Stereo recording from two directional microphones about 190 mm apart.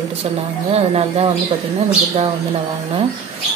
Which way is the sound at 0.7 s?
30° right (ahead or behind).